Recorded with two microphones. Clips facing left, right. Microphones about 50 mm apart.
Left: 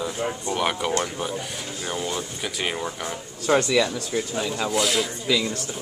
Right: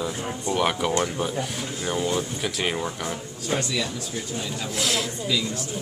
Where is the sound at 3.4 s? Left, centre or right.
Left.